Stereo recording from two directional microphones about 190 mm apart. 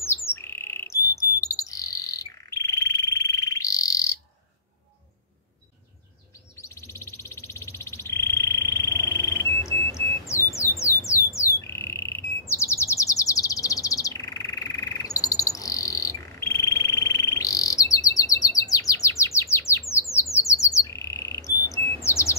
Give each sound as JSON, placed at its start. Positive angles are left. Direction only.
{"t": 0.0, "sound": "bird", "side_deg": 15}
{"t": 6.5, "sound": "bird", "side_deg": 15}